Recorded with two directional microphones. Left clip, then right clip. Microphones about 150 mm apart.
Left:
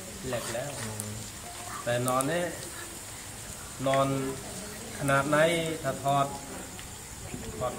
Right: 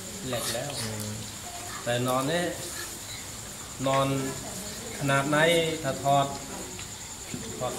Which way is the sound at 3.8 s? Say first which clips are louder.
Right 1 dB; 10° right (ahead or behind).